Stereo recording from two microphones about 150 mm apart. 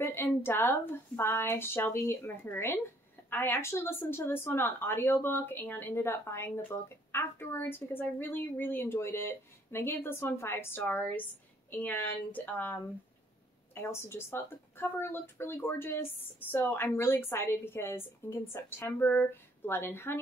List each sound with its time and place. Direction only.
0.0 s a woman's voice: 15° left (ahead or behind)